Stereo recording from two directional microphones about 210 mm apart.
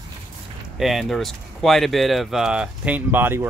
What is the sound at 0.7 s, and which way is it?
Speech, centre (ahead or behind).